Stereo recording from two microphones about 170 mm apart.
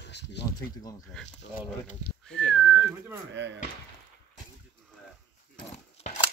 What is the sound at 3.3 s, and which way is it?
Speech, 90° right.